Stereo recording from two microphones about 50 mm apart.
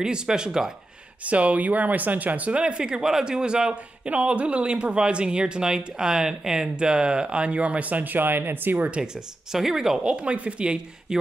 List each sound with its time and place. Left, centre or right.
0.0 s speech: centre
1.2 s speech: right
9.0 s speech: centre
10.0 s speech: right